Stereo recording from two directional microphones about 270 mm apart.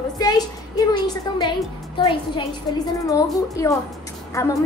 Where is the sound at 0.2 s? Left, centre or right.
Centre.